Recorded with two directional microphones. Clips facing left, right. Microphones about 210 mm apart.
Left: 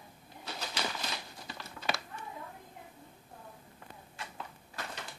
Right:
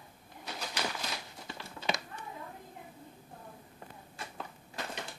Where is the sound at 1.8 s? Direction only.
20° right (ahead or behind).